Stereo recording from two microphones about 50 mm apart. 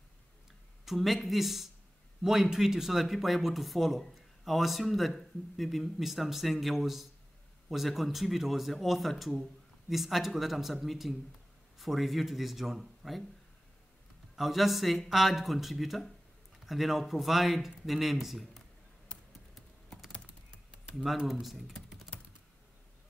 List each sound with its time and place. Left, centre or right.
0.8 s speech: centre
14.3 s speech: centre
19.5 s computer keyboard: centre
20.9 s speech: centre